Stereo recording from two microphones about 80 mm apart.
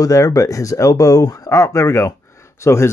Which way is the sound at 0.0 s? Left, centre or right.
Left.